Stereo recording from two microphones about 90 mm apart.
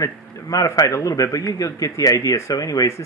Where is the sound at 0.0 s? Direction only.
40° left (ahead or behind).